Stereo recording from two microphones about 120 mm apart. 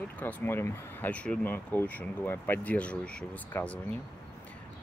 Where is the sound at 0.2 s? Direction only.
15° left (ahead or behind).